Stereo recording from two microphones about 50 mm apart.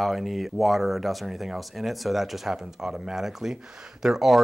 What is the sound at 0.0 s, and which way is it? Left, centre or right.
Speech, centre.